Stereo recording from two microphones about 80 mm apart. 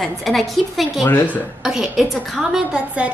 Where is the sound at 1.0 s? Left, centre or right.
Left.